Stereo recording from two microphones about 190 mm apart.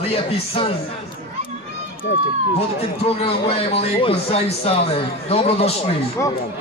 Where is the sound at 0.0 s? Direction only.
30° left (ahead or behind).